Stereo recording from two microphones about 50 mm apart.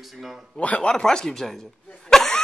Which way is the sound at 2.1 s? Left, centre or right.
Centre.